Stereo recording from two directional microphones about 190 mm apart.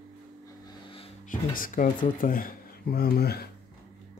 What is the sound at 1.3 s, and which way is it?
Speech, 45° left (ahead or behind).